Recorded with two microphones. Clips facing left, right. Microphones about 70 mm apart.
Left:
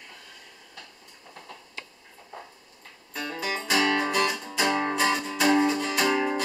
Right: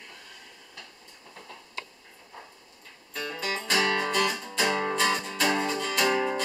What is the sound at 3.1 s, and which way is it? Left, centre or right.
Music, centre.